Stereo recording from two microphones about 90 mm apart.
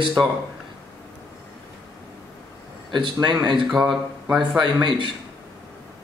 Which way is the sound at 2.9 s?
60° right (ahead or behind).